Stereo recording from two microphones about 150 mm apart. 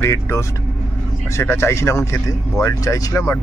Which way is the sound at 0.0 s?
20° left (ahead or behind).